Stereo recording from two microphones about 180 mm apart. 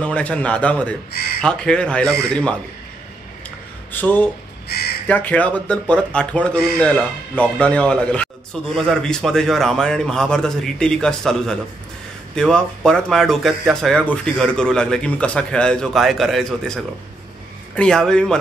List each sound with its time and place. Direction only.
0.0 s a man's voice: 5° left (ahead or behind)
3.9 s speech: 10° left (ahead or behind)
4.6 s speech: 60° left (ahead or behind)
5.0 s a man's voice: 10° left (ahead or behind)